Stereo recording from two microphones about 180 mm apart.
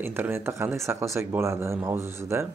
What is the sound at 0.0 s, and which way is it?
Speech, 10° right (ahead or behind).